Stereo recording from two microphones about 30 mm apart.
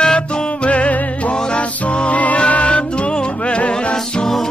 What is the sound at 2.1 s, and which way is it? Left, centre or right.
Music, left.